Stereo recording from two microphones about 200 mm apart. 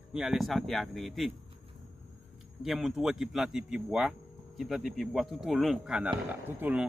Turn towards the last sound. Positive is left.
turn(degrees=-10)  # may be behind; listen again after turning